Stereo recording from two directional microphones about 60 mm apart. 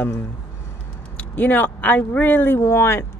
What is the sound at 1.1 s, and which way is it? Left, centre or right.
Speech, left.